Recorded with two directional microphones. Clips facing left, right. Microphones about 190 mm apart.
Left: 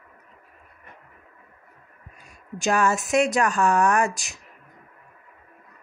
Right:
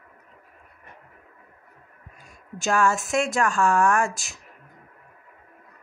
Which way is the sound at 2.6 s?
20° left (ahead or behind).